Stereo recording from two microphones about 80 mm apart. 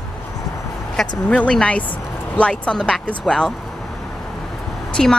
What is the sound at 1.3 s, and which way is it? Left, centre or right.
Speech, centre.